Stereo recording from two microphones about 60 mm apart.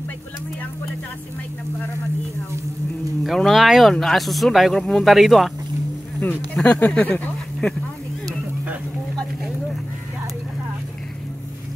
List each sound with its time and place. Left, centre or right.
3.3 s speech: centre
6.5 s speech: left